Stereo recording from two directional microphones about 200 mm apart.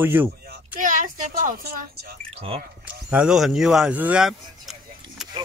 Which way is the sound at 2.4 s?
30° right (ahead or behind).